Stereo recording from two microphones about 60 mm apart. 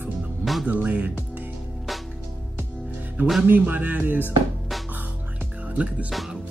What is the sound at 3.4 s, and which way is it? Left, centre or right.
Speech, right.